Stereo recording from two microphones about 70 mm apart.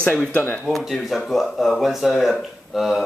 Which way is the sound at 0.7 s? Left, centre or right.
Centre.